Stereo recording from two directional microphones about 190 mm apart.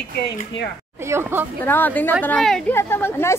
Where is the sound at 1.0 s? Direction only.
10° right (ahead or behind).